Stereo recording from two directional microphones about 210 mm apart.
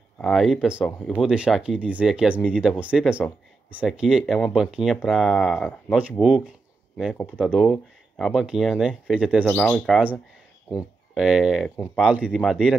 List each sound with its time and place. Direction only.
0.2 s speech: centre (ahead or behind)
11.7 s speech: 10° left (ahead or behind)
12.0 s speech: 5° right (ahead or behind)